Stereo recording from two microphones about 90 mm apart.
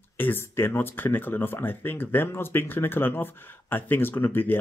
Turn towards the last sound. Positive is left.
turn(degrees=20)  # may be behind; listen again after turning